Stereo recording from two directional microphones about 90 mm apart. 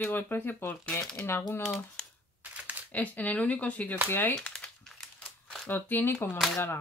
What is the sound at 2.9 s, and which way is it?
Speech, 15° left (ahead or behind).